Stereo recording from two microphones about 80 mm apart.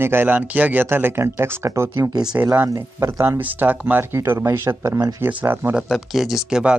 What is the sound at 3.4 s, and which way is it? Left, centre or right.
Speech, right.